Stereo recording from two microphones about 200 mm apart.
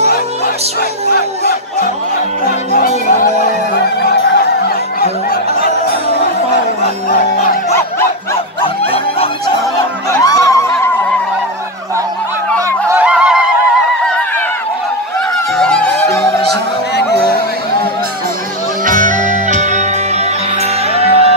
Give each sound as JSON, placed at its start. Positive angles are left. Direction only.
{"t": 10.1, "sound": "snicker", "side_deg": 15}
{"t": 12.5, "sound": "a sound", "side_deg": -10}
{"t": 15.5, "sound": "music", "side_deg": 5}
{"t": 18.9, "sound": "music", "side_deg": -40}
{"t": 20.9, "sound": "music", "side_deg": -30}